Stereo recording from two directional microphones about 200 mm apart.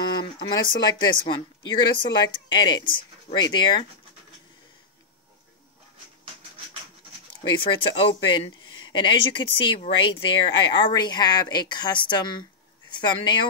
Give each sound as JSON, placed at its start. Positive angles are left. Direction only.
{"t": 0.1, "sound": "speech", "side_deg": 20}
{"t": 7.4, "sound": "speech", "side_deg": 25}